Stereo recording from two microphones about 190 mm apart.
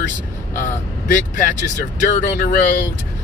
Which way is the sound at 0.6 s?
45° left (ahead or behind).